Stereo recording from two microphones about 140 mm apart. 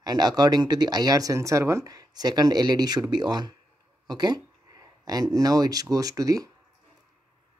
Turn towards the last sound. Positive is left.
turn(degrees=-25)  # may be behind; listen again after turning